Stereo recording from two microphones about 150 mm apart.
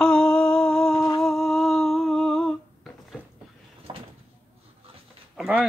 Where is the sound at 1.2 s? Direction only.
Centre (ahead or behind).